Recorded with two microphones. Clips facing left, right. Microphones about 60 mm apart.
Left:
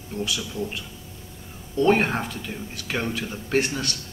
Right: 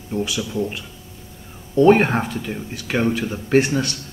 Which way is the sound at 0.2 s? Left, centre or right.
Centre.